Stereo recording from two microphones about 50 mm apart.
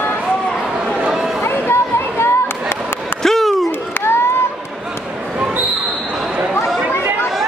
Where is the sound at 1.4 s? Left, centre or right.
Left.